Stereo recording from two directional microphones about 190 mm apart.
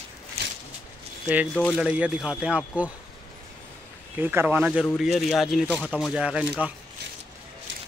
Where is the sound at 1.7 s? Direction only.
5° right (ahead or behind).